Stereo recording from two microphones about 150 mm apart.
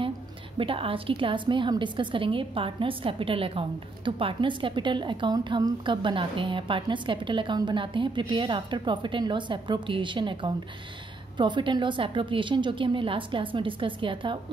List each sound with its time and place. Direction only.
0.6 s a woman's voice: 35° right (ahead or behind)